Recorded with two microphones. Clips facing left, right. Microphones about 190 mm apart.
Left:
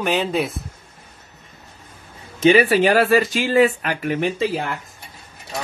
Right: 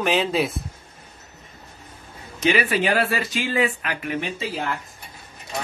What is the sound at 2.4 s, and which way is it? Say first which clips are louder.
Speech: left 7 dB; 30° left (ahead or behind).